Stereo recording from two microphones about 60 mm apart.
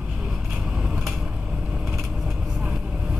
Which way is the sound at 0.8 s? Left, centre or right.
Centre.